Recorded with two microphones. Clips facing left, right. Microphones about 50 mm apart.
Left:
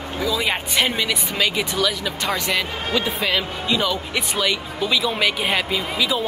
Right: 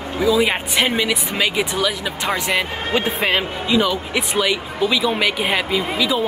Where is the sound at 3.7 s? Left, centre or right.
Centre.